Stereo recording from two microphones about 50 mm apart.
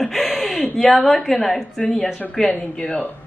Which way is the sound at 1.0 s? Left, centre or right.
Centre.